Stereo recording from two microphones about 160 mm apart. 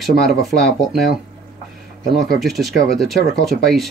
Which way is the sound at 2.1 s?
Centre (ahead or behind).